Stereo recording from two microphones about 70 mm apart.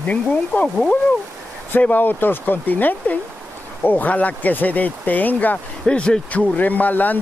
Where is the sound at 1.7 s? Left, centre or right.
Left.